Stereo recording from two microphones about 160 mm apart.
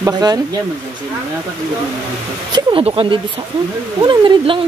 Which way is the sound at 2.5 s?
30° right (ahead or behind).